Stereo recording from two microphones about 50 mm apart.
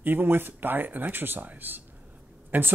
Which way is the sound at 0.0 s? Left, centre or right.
Right.